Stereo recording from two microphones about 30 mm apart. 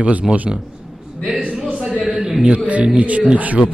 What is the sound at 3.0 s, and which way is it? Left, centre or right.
Speech, right.